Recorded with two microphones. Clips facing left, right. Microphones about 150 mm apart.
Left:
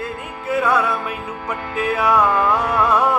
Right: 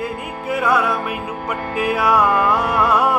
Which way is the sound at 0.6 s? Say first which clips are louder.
Right 1 dB; 10° right (ahead or behind).